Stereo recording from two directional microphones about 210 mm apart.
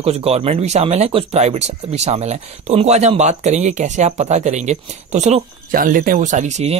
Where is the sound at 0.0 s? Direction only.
30° right (ahead or behind).